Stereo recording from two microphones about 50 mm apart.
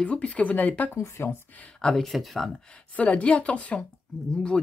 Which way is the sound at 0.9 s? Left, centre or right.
Left.